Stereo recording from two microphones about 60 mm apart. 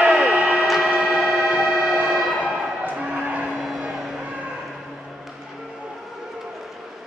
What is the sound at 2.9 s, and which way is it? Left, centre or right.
Music, centre.